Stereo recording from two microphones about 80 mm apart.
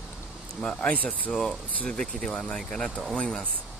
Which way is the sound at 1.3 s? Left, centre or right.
Centre.